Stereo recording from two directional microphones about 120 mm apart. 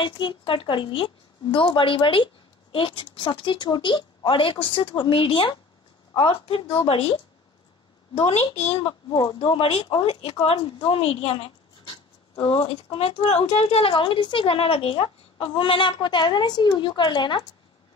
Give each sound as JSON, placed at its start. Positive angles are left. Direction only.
{"t": 0.0, "sound": "a woman's voice", "side_deg": 45}
{"t": 9.1, "sound": "speech", "side_deg": 35}